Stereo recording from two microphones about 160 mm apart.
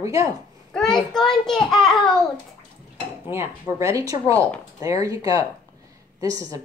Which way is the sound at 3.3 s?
15° right (ahead or behind).